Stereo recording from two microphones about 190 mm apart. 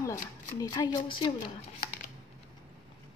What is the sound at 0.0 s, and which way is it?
Speech, 20° left (ahead or behind).